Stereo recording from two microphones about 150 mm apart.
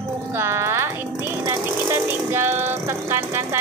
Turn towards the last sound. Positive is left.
turn(degrees=-15)  # may be behind; listen again after turning